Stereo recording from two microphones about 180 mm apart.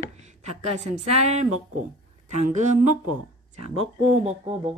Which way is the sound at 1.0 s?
35° right (ahead or behind).